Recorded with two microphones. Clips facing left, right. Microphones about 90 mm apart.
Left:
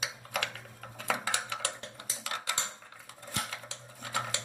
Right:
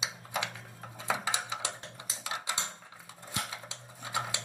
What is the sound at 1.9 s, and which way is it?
Typing, 15° right (ahead or behind).